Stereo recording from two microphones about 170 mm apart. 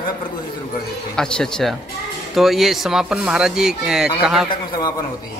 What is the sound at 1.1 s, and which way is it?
Speech, 5° left (ahead or behind).